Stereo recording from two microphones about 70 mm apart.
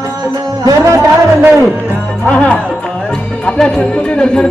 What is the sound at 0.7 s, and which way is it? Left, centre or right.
Music, right.